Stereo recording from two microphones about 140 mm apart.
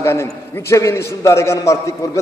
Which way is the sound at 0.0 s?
20° left (ahead or behind).